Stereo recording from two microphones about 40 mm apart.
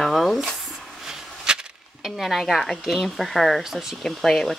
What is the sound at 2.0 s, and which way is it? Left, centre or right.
Speech, centre.